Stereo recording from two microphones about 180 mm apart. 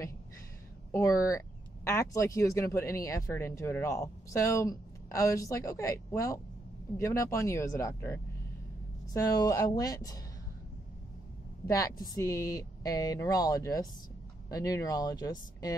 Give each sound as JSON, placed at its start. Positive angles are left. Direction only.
{"t": 0.9, "sound": "speech", "side_deg": 15}
{"t": 11.6, "sound": "speech", "side_deg": 20}